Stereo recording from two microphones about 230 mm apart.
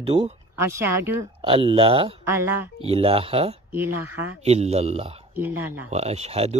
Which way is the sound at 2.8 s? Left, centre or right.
Right.